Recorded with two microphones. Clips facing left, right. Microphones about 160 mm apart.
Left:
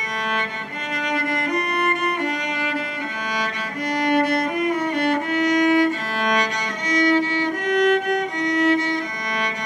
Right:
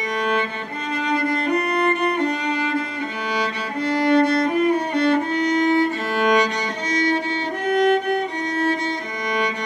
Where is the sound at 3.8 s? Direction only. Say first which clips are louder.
Right 3 dB; 25° right (ahead or behind).